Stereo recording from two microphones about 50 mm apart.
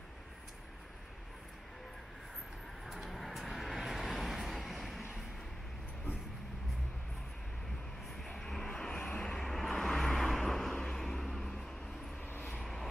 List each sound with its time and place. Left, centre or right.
2.9 s vehicle: centre
8.2 s vehicle: centre
9.3 s vehicle: centre
12.3 s vehicle: left